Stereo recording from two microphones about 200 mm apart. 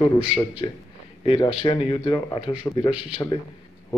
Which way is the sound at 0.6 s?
30° left (ahead or behind).